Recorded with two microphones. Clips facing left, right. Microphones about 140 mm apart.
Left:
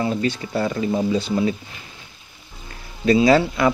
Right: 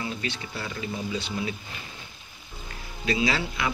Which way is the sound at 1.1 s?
40° left (ahead or behind).